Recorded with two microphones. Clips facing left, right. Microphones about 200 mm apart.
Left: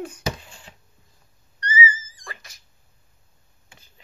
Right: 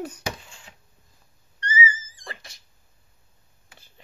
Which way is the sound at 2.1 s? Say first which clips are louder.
Right 1 dB; 25° right (ahead or behind).